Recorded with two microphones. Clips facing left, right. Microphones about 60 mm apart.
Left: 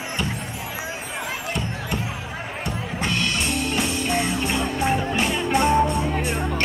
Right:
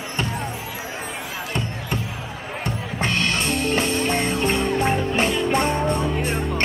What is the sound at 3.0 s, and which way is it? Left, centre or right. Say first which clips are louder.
Music: right 2 dB; right.